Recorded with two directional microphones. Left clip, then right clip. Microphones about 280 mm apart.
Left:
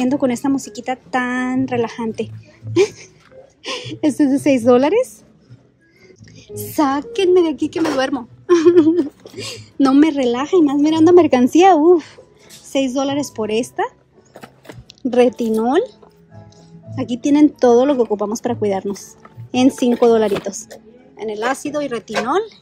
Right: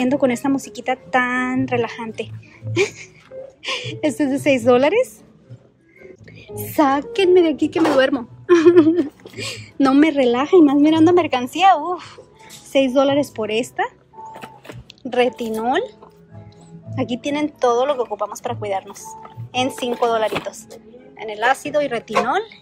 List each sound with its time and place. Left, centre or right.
0.0 s a woman's voice: centre
6.6 s a woman's voice: centre
12.7 s a woman's voice: centre
14.3 s power windows: centre
15.0 s a woman's voice: centre
16.9 s a woman's voice: centre